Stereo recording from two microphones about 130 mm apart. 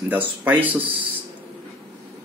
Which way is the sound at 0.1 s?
15° right (ahead or behind).